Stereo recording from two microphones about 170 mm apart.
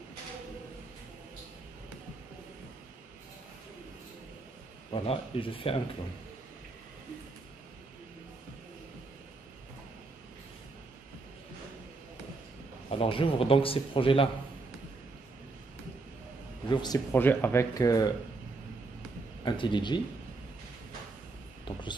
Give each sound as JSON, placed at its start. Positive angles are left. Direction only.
{"t": 4.9, "sound": "a man's voice", "side_deg": 35}
{"t": 12.9, "sound": "a man's voice", "side_deg": 35}
{"t": 16.6, "sound": "a man's voice", "side_deg": 25}
{"t": 17.1, "sound": "speech", "side_deg": 10}
{"t": 19.4, "sound": "speech", "side_deg": 30}
{"t": 21.7, "sound": "a sound", "side_deg": 30}